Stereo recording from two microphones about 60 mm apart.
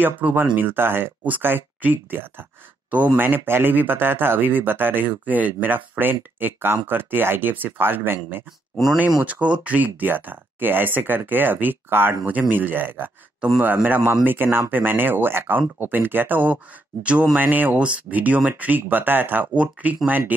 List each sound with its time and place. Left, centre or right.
0.0 s speech: right
9.2 s speech: right
17.0 s speech: centre